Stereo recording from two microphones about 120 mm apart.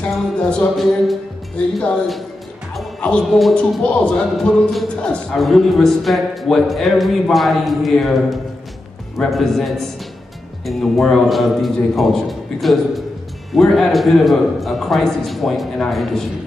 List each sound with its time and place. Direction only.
0.0 s speech: 5° left (ahead or behind)